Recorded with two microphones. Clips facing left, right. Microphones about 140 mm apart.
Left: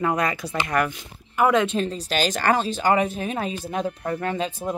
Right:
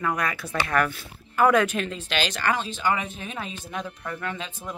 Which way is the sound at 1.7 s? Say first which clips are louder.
Left 4 dB; 35° left (ahead or behind).